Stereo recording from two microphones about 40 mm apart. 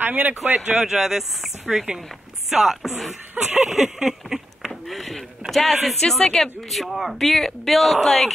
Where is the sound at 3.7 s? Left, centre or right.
Centre.